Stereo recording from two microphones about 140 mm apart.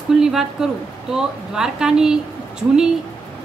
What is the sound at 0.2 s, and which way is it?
Speech, 5° right (ahead or behind).